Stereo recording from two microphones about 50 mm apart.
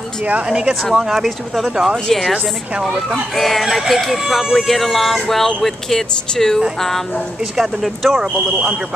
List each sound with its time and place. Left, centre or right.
0.2 s a woman's voice: right
0.5 s speech: centre
0.9 s speech: centre
3.3 s speech: centre
7.5 s speech: centre
8.5 s a woman's voice: right